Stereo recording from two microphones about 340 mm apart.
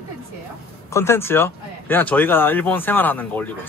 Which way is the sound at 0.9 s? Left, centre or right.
Centre.